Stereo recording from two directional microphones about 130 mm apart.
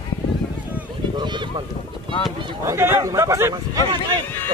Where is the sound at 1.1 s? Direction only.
35° right (ahead or behind).